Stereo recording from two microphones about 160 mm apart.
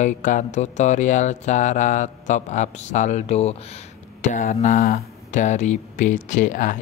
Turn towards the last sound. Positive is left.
turn(degrees=55)  # may be behind; listen again after turning